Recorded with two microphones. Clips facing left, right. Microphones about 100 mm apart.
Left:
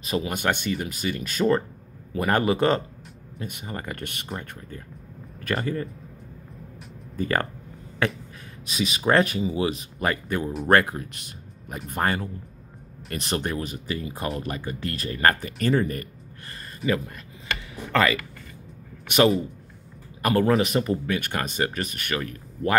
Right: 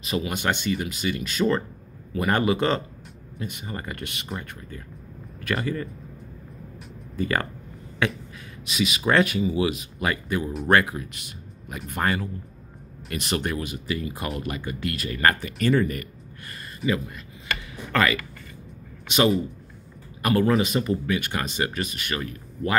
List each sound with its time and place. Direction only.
0.0 s speech: 40° left (ahead or behind)
7.2 s speech: 45° left (ahead or behind)
8.6 s speech: 35° left (ahead or behind)
15.6 s a sound: 35° left (ahead or behind)
20.2 s a man's voice: 40° left (ahead or behind)
20.6 s speech: 55° left (ahead or behind)